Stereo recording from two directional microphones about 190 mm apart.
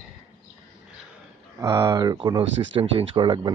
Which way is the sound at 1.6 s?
15° right (ahead or behind).